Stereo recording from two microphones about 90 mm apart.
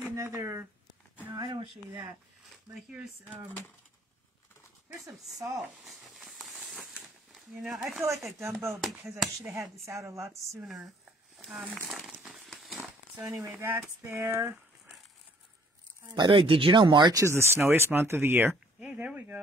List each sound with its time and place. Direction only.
0.0 s a sound: 30° right (ahead or behind)
1.5 s speech: 70° right (ahead or behind)
2.9 s speech: 15° right (ahead or behind)
5.2 s a sound: centre (ahead or behind)
7.3 s speech: 5° right (ahead or behind)
9.8 s speech: 35° right (ahead or behind)
10.6 s speech: 5° right (ahead or behind)
11.9 s a sound: 5° right (ahead or behind)
13.2 s speech: 35° right (ahead or behind)
13.6 s speech: 25° right (ahead or behind)
16.1 s speech: 60° right (ahead or behind)
17.1 s speech: 30° right (ahead or behind)